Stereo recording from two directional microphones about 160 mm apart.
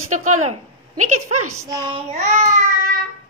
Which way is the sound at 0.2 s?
45° right (ahead or behind).